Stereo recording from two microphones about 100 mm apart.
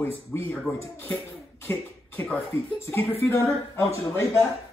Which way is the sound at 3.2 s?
30° left (ahead or behind).